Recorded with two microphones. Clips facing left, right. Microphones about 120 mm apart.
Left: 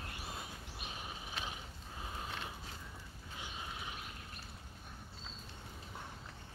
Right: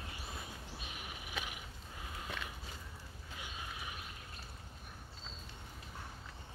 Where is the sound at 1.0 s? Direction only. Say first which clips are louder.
Even; 30° left (ahead or behind).